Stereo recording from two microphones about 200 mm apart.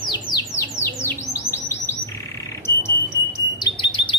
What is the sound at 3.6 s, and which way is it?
Chirp, 25° left (ahead or behind).